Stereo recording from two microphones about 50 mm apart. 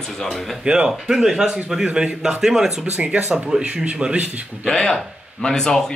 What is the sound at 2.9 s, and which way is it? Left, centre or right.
Speech, right.